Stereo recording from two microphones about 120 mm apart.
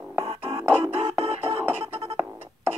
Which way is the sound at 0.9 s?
55° right (ahead or behind).